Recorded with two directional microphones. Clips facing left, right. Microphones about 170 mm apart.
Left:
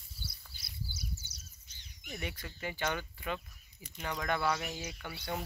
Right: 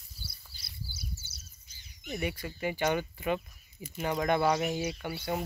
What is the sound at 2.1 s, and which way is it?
Speech, 10° right (ahead or behind).